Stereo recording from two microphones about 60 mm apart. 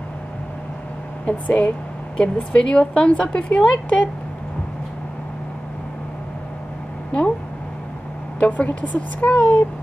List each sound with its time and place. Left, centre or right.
1.2 s a woman's voice: left
2.6 s a woman's voice: centre
8.4 s a woman's voice: left